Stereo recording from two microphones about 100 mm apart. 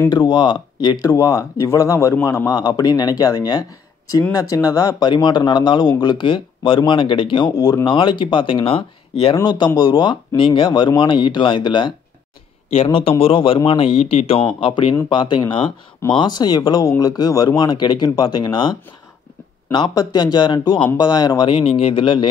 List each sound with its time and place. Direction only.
0.1 s speech: 50° left (ahead or behind)
7.5 s speech: 35° left (ahead or behind)
7.8 s speech: 55° left (ahead or behind)
9.4 s speech: 45° left (ahead or behind)
12.7 s speech: 65° left (ahead or behind); by 21.5 s 45° left (ahead or behind)
21.5 s speech: 65° left (ahead or behind)